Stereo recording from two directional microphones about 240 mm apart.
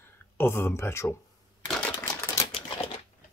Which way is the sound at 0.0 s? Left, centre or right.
Centre.